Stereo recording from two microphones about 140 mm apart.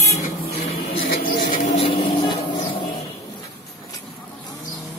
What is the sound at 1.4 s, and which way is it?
Vehicle, 70° left (ahead or behind).